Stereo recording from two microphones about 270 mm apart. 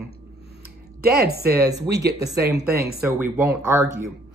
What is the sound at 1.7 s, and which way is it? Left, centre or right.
Speech, centre.